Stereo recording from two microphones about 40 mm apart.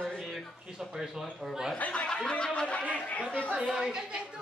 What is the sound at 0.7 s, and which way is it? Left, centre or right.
Speech, centre.